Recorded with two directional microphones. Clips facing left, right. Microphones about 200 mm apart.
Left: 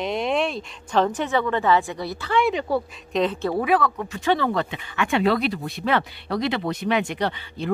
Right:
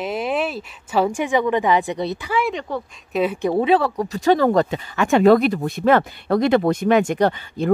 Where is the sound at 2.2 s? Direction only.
Centre (ahead or behind).